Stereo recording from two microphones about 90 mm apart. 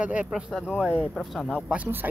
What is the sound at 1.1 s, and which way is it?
Speech, centre (ahead or behind).